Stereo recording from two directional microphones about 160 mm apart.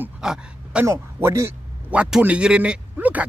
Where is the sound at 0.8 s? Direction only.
15° right (ahead or behind).